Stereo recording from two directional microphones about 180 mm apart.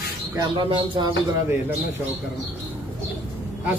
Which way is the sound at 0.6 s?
25° right (ahead or behind).